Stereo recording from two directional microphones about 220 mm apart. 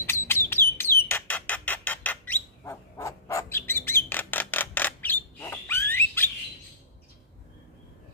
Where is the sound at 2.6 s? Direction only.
15° left (ahead or behind).